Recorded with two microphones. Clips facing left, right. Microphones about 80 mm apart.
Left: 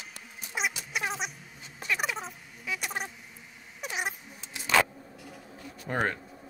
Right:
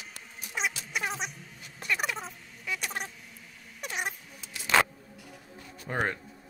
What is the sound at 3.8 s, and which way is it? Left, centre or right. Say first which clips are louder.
Cat: left 1 dB; centre.